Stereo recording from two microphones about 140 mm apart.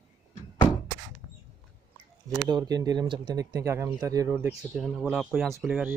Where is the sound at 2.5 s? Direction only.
30° right (ahead or behind).